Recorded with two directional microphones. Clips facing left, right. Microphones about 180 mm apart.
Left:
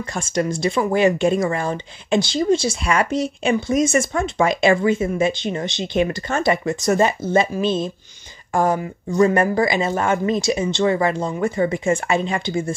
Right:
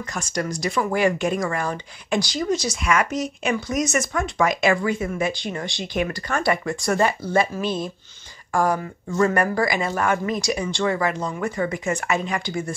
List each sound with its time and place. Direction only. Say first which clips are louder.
0.1 s speech: left 5 dB; 25° left (ahead or behind)